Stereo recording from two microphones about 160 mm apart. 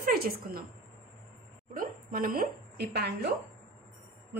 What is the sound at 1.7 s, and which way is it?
A woman's voice, 65° right (ahead or behind).